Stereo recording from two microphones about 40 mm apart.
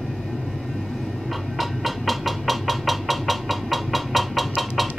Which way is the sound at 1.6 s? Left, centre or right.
Centre.